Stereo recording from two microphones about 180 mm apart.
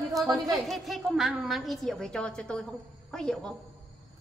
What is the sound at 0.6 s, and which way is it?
A woman's voice, centre (ahead or behind).